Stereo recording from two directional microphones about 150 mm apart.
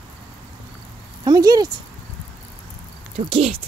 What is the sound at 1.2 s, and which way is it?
Speech, 25° right (ahead or behind).